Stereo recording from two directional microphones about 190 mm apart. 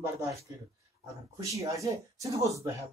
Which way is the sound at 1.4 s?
15° right (ahead or behind).